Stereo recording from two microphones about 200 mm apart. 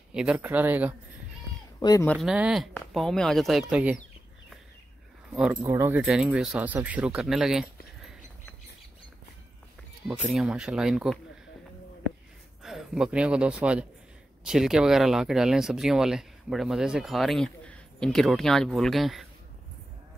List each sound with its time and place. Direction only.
0.1 s speech: 5° right (ahead or behind)
1.8 s speech: 20° left (ahead or behind)
2.1 s speech: 5° right (ahead or behind)
5.3 s speech: 5° right (ahead or behind)
5.6 s speech: 15° right (ahead or behind)
10.0 s speech: 5° right (ahead or behind)
12.6 s a man's voice: centre (ahead or behind)